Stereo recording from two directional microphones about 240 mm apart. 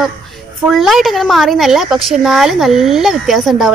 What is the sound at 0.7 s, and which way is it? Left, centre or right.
Speech, centre.